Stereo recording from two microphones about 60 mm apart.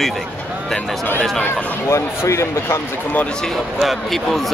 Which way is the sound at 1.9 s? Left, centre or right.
Left.